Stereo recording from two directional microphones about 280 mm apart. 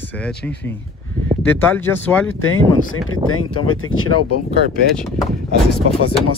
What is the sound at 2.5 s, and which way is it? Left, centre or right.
Speech, left.